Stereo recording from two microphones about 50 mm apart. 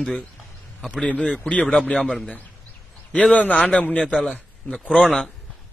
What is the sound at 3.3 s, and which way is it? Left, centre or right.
A man's voice, left.